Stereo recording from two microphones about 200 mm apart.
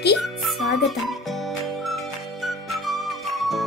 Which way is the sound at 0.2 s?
Centre (ahead or behind).